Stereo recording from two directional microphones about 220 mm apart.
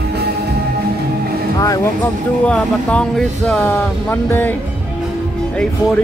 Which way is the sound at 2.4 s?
5° left (ahead or behind).